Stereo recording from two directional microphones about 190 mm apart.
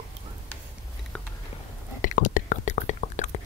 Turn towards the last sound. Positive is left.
turn(degrees=35)  # may be behind; listen again after turning